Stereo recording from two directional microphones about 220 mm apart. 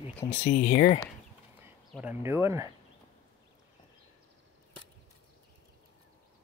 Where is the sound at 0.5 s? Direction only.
45° left (ahead or behind).